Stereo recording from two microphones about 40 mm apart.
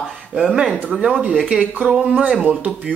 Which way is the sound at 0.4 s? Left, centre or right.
Centre.